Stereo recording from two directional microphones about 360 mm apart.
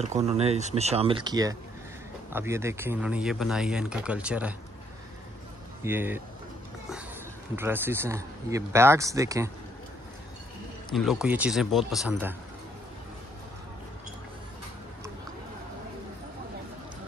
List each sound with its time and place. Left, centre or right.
0.0 s speech: centre
5.9 s speech: centre
7.5 s speech: centre
10.9 s speech: centre